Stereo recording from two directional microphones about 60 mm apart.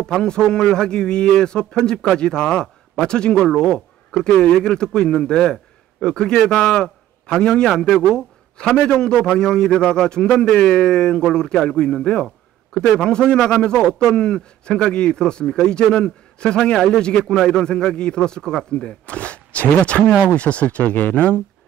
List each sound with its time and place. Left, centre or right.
0.0 s speech: centre
8.1 s a sound: centre
8.7 s speech: centre